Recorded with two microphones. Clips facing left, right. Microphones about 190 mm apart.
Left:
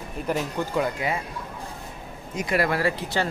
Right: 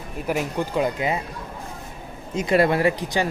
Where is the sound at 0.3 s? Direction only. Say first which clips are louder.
Right 2 dB; 15° right (ahead or behind).